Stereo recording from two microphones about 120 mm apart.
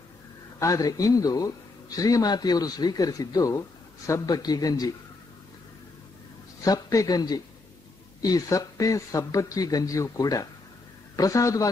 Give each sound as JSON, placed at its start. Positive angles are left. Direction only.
{"t": 0.6, "sound": "speech", "side_deg": 25}
{"t": 6.6, "sound": "speech", "side_deg": 30}